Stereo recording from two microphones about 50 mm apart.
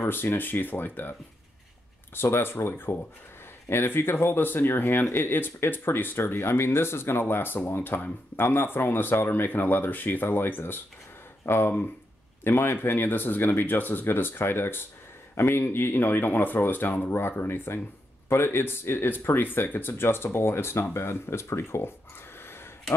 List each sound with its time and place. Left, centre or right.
0.0 s speech: left
2.1 s speech: left
6.3 s speech: left
17.4 s speech: left
22.4 s a sound: left